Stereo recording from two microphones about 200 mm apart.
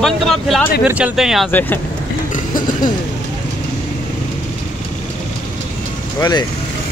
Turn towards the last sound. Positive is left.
turn(degrees=20)  # may be behind; listen again after turning